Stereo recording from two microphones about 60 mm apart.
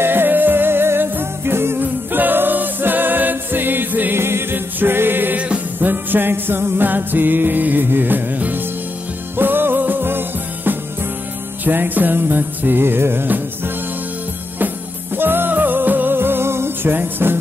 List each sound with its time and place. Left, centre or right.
0.0 s music: right
4.2 s music: right
15.1 s music: right